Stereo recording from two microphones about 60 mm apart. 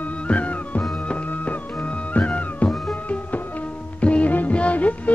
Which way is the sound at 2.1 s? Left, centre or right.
Left.